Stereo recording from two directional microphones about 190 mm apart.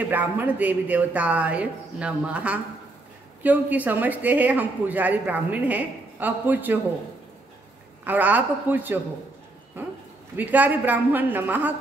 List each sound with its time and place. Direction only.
0.1 s speech: 10° right (ahead or behind)
8.0 s speech: 10° right (ahead or behind)